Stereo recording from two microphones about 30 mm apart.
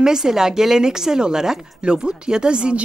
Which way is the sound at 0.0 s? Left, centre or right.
Centre.